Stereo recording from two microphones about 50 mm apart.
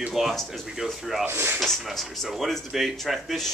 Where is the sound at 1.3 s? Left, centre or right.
Right.